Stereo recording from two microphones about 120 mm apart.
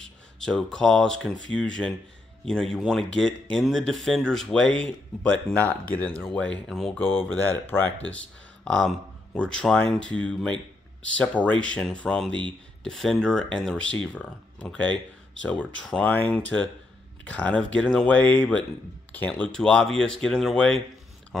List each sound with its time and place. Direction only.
0.0 s speech: 5° left (ahead or behind)
7.4 s speech: 15° left (ahead or behind)
8.6 s speech: 5° left (ahead or behind)